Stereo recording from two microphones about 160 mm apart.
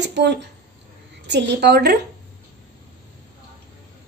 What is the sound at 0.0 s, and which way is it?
A woman's voice, 90° right.